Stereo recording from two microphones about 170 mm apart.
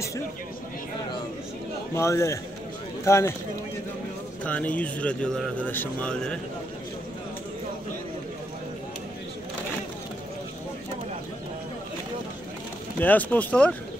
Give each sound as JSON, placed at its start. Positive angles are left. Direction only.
{"t": 2.0, "sound": "speech", "side_deg": 15}
{"t": 4.5, "sound": "speech", "side_deg": 10}
{"t": 13.0, "sound": "speech", "side_deg": 10}